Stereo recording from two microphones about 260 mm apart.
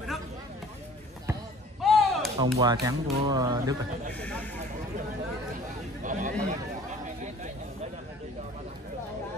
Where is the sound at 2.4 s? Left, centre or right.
Centre.